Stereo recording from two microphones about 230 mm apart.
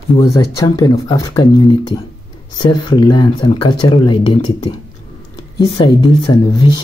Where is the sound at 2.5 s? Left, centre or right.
Centre.